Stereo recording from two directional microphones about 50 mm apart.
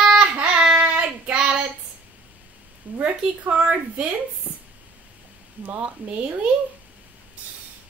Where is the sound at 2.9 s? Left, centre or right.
Right.